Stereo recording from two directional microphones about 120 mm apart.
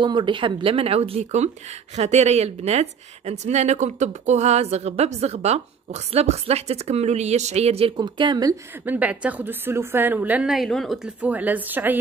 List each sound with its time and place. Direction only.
0.0 s speech: 40° right (ahead or behind)
8.8 s a woman's voice: 15° right (ahead or behind)
10.5 s a woman's voice: centre (ahead or behind)
11.1 s a woman's voice: 15° right (ahead or behind)